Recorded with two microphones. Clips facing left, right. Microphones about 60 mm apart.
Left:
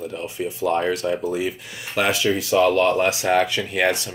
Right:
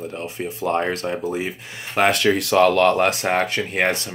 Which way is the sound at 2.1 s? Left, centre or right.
Right.